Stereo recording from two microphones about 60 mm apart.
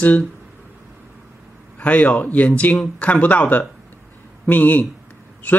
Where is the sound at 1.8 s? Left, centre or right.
Left.